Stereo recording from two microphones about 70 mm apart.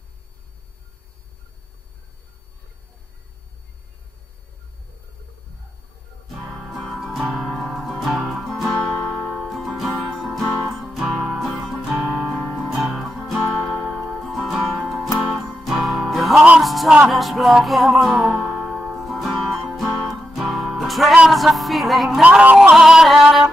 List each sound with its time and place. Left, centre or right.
6.2 s music: centre
22.2 s a sound: centre
22.8 s music: centre